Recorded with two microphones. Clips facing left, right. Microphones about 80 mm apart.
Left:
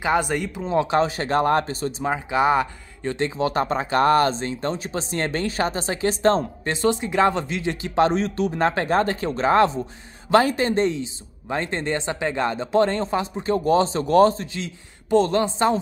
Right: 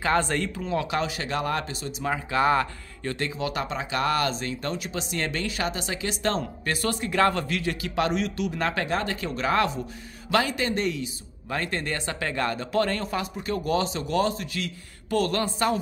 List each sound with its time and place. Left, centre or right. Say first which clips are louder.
0.0 s speech: left 2 dB; centre
0.6 s speech: left 11 dB; left
2.0 s speech: left 3 dB; centre